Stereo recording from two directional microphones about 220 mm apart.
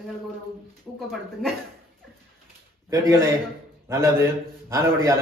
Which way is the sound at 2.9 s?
15° right (ahead or behind).